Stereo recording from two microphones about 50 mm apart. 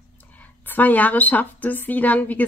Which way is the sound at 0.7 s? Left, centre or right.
Left.